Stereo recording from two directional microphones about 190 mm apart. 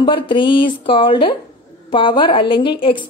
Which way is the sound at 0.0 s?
25° left (ahead or behind).